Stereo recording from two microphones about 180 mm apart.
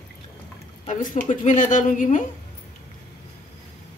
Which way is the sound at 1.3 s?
45° left (ahead or behind).